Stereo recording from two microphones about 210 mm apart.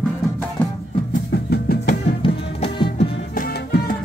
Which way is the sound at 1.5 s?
50° left (ahead or behind).